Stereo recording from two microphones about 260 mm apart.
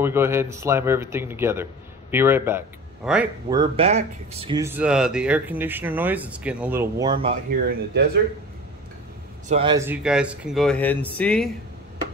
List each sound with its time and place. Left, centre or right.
0.0 s speech: centre
3.4 s speech: centre
7.5 s speech: right
9.5 s a man's voice: centre
9.8 s speech: centre